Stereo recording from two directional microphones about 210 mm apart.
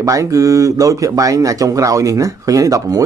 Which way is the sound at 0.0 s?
15° right (ahead or behind).